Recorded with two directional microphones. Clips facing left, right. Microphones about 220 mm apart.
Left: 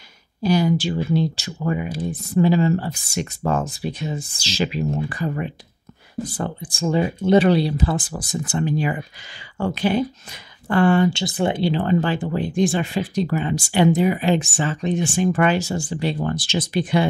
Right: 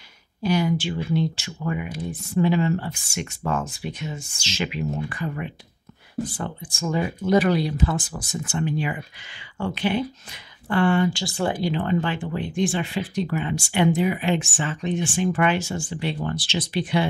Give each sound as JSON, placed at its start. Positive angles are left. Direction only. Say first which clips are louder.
{"t": 0.4, "sound": "speech", "louder": "left 3 dB", "side_deg": 35}
{"t": 11.1, "sound": "speech", "louder": "left 3 dB", "side_deg": 20}